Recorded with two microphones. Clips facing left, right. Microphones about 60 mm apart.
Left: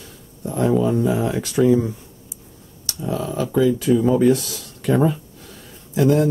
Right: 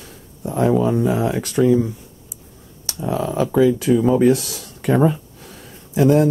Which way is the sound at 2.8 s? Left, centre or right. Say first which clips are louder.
Right 3 dB; right.